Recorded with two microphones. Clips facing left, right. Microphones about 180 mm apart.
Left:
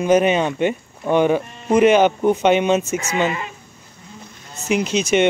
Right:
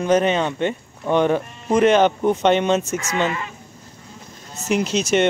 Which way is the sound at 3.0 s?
15° left (ahead or behind).